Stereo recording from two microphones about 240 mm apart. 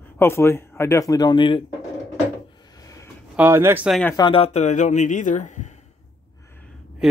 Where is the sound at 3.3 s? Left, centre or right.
Centre.